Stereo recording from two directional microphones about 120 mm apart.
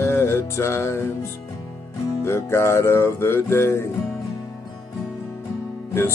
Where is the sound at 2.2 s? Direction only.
20° left (ahead or behind).